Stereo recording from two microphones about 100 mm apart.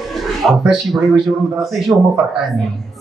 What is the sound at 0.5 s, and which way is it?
A man's voice, 5° right (ahead or behind).